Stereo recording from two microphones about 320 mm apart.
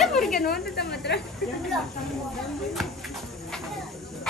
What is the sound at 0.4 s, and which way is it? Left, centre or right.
Speech, left.